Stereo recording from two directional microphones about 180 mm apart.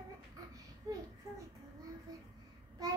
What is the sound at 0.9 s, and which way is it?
Speech, 20° right (ahead or behind).